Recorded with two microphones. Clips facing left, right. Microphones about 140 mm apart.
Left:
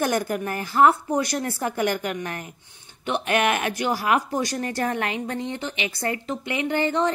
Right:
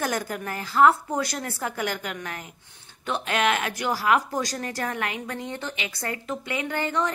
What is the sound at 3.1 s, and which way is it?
Speech, 20° left (ahead or behind).